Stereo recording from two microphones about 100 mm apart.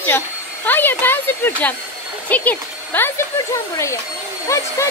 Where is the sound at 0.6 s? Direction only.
20° left (ahead or behind).